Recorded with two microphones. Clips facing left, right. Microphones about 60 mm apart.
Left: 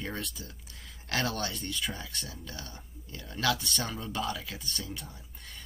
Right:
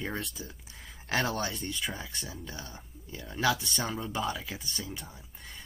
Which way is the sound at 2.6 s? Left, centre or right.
Centre.